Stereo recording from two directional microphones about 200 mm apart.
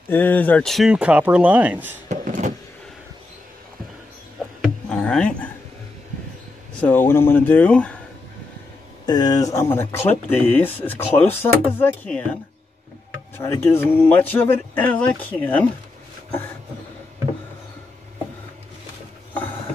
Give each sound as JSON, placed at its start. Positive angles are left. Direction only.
{"t": 0.1, "sound": "speech", "side_deg": 10}
{"t": 2.0, "sound": "a sound", "side_deg": -40}
{"t": 4.8, "sound": "a sound", "side_deg": 5}
{"t": 6.8, "sound": "speech", "side_deg": 10}
{"t": 9.0, "sound": "speech", "side_deg": 20}
{"t": 13.4, "sound": "speech", "side_deg": 15}